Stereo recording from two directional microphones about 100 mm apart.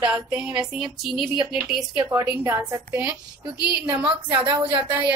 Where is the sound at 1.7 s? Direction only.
5° right (ahead or behind).